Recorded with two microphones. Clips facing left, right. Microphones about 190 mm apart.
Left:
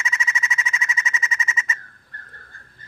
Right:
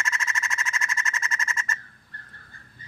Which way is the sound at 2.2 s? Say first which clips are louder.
Left 3 dB; 50° left (ahead or behind).